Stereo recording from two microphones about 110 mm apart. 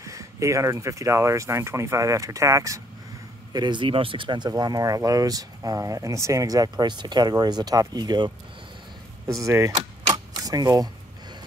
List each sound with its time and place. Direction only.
0.0 s speech: 30° right (ahead or behind)
3.5 s speech: 45° right (ahead or behind)
9.3 s speech: 30° right (ahead or behind)
10.1 s a sound: 35° right (ahead or behind)